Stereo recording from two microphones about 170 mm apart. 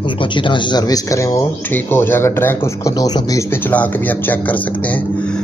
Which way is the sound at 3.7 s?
10° left (ahead or behind).